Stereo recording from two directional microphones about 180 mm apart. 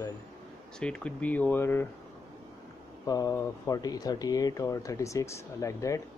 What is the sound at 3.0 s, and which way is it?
Speech, 20° left (ahead or behind).